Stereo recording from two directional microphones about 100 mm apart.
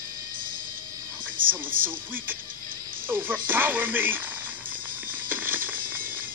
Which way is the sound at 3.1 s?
20° right (ahead or behind).